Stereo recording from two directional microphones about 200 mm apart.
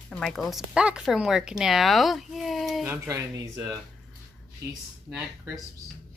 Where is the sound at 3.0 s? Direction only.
15° right (ahead or behind).